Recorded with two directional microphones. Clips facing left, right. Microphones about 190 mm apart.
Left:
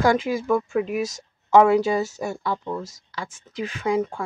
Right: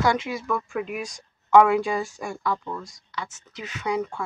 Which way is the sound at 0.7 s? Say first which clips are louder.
Left 6 dB; 40° left (ahead or behind).